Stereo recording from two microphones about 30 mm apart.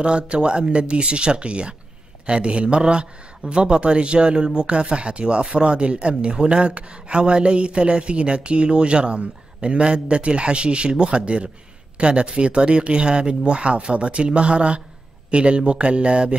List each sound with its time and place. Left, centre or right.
0.0 s speech: right